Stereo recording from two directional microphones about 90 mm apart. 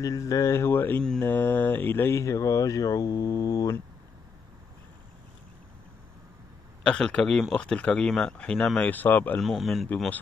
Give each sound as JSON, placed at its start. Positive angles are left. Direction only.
{"t": 0.0, "sound": "speech", "side_deg": 40}
{"t": 6.8, "sound": "speech", "side_deg": 10}
{"t": 9.4, "sound": "speech", "side_deg": 0}